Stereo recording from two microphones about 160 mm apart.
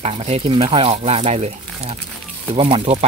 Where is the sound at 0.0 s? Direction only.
40° right (ahead or behind).